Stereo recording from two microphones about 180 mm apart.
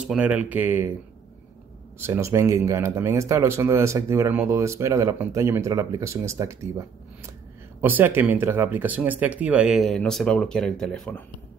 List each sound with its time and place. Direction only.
0.0 s speech: 5° right (ahead or behind)
2.0 s speech: 15° right (ahead or behind)
7.8 s speech: 10° right (ahead or behind); by 11.2 s 5° left (ahead or behind)